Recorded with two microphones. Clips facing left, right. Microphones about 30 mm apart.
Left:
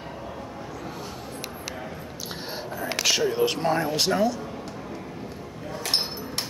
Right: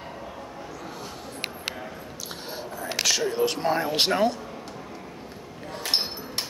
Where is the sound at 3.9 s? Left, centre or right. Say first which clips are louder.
Right 1 dB; right.